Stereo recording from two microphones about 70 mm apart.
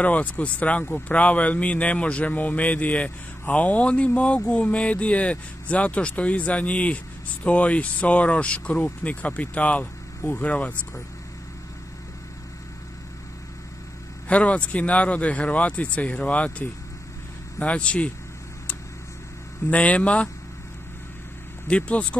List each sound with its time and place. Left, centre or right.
0.0 s speech: left
14.3 s speech: centre
19.7 s speech: centre
21.6 s speech: centre